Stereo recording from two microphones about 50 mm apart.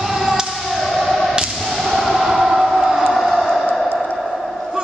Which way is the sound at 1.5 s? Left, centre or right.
Centre.